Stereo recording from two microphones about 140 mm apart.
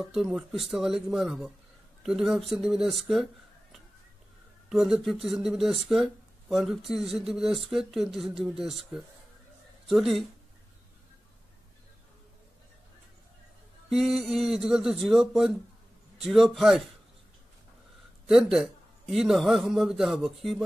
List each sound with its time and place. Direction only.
0.0 s speech: centre (ahead or behind)
4.6 s speech: 5° right (ahead or behind)
13.8 s speech: centre (ahead or behind)
18.2 s speech: 5° right (ahead or behind)